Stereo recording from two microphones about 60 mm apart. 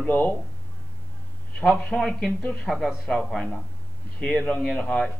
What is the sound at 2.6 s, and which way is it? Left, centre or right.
Speech, centre.